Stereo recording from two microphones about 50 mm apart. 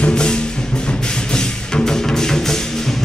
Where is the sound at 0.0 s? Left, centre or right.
Centre.